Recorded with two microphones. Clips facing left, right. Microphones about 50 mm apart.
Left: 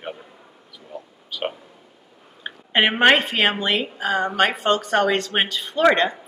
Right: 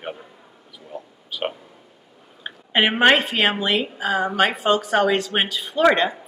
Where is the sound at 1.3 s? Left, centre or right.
Centre.